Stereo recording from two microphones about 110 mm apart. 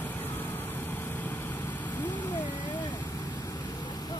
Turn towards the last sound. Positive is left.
turn(degrees=45)  # may be behind; listen again after turning